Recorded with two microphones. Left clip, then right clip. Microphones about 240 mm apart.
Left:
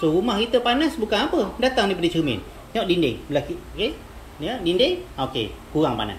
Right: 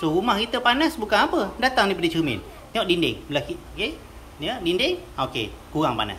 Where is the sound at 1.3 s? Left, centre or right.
Right.